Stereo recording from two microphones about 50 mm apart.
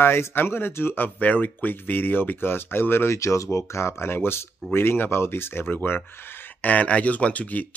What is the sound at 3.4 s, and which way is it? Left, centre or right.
Speech, left.